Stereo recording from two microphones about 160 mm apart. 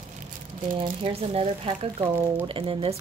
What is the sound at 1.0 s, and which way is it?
Speech, 40° right (ahead or behind).